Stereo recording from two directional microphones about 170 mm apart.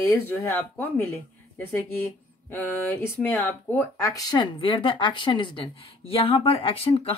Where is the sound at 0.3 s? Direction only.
10° left (ahead or behind).